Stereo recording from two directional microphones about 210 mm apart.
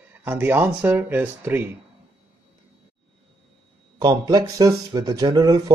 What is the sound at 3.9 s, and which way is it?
Speech, 20° right (ahead or behind).